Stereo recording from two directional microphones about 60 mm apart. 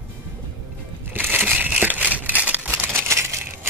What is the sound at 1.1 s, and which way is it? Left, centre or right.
Crushing, right.